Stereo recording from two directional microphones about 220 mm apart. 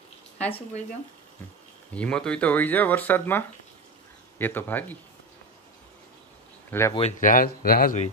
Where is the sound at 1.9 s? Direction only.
5° left (ahead or behind).